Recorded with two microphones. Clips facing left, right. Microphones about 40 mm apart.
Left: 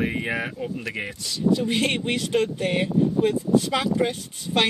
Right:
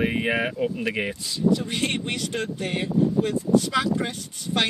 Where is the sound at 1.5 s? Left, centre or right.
Centre.